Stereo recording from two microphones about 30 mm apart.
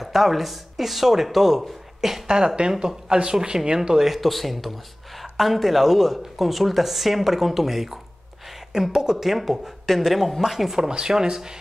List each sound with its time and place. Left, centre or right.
0.0 s speech: centre
2.0 s a sound: centre
2.2 s speech: right
2.7 s speech: centre
4.0 s a man's voice: centre
8.9 s speech: right
9.2 s a man's voice: centre
10.9 s speech: right